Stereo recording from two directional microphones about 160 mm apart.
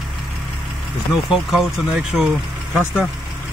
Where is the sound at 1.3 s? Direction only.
5° right (ahead or behind).